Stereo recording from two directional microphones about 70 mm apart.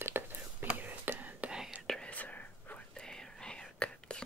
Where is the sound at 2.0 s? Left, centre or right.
Left.